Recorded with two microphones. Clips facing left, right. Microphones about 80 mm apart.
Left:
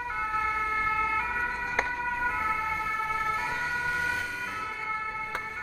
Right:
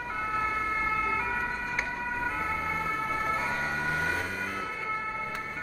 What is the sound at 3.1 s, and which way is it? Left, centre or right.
Ambulance, right.